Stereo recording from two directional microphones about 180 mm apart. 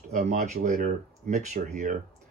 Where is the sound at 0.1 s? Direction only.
40° right (ahead or behind).